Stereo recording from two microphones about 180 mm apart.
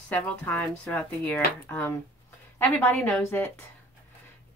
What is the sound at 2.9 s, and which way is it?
Speech, 5° left (ahead or behind).